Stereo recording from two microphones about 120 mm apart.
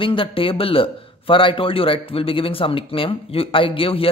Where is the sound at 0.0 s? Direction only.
45° left (ahead or behind).